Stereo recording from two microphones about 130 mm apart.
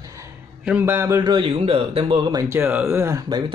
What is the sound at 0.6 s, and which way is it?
Speech, 15° right (ahead or behind).